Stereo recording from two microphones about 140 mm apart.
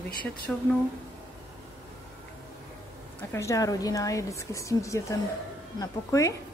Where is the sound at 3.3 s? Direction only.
20° left (ahead or behind).